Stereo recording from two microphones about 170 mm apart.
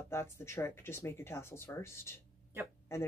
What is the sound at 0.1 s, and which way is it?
Speech, 15° left (ahead or behind).